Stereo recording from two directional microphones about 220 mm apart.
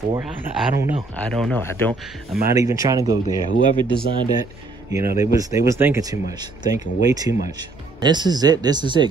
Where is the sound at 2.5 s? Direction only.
15° right (ahead or behind).